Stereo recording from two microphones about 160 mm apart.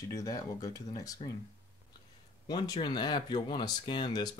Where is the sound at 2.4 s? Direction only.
25° left (ahead or behind).